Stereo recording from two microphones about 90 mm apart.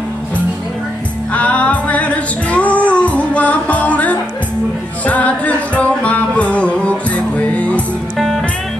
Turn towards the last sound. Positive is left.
turn(degrees=15)  # may be behind; listen again after turning